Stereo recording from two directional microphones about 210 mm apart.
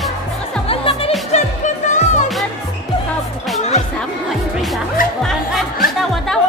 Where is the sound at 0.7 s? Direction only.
25° left (ahead or behind).